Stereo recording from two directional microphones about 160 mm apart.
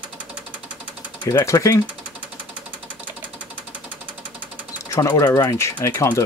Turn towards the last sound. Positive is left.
turn(degrees=15)  # may be behind; listen again after turning